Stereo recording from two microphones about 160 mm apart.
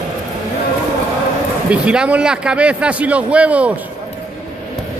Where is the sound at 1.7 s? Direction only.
5° right (ahead or behind).